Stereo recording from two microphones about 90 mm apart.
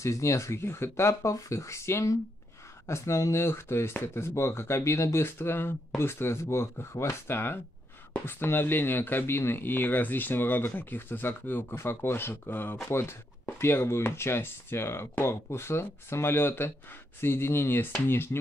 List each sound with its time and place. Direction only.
0.0 s speech: 35° left (ahead or behind)